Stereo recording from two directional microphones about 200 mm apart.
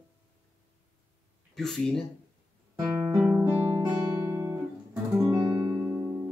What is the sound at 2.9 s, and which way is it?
Guitar, 5° right (ahead or behind).